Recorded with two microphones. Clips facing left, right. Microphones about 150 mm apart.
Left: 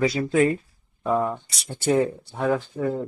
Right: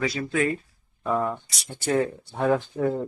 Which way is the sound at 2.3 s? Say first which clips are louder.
Right 3 dB; 10° right (ahead or behind).